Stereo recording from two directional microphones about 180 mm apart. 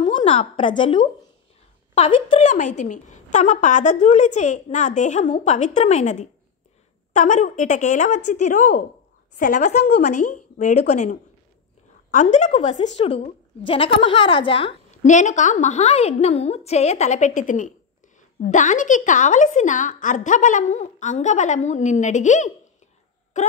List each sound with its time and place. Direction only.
0.0 s a woman's voice: 30° left (ahead or behind)
2.4 s a woman's voice: 40° left (ahead or behind)
15.0 s a woman's voice: 40° left (ahead or behind)